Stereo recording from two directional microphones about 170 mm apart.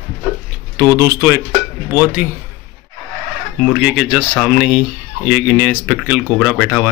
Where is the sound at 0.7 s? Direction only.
15° right (ahead or behind).